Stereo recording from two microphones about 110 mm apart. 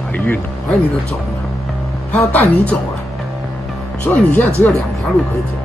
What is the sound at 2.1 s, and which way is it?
Speech, 15° left (ahead or behind).